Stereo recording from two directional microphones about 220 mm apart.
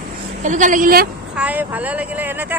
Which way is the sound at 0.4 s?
35° right (ahead or behind).